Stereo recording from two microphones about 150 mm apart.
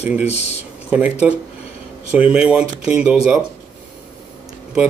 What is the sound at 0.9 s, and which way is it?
Speech, 10° right (ahead or behind).